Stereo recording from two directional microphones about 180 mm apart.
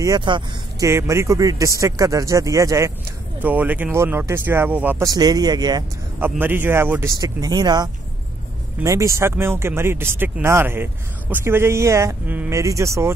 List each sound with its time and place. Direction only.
0.0 s speech: 25° right (ahead or behind)
6.1 s speech: 10° right (ahead or behind)